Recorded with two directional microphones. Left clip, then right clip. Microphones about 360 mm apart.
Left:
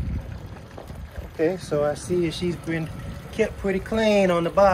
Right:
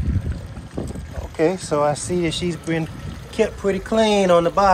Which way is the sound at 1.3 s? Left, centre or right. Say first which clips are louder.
Right 4 dB; centre.